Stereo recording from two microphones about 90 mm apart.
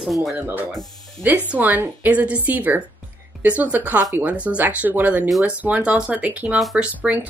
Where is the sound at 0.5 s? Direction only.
20° right (ahead or behind).